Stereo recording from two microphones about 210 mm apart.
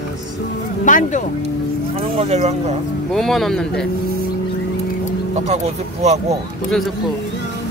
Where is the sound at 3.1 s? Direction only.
Centre (ahead or behind).